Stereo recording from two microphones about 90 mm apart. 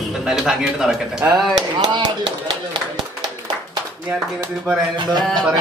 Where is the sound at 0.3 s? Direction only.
5° right (ahead or behind).